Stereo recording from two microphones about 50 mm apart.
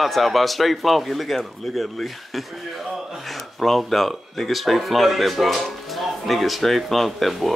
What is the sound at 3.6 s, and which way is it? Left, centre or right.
Speech, centre.